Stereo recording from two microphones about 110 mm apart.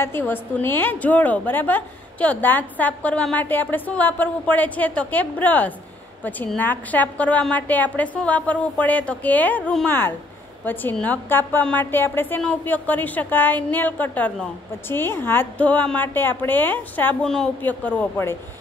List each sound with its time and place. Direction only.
0.0 s a woman's voice: 20° left (ahead or behind)